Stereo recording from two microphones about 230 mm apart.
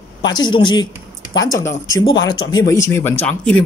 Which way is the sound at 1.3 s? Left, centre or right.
Left.